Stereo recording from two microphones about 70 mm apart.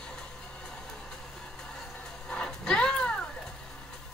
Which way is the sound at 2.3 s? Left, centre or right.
Centre.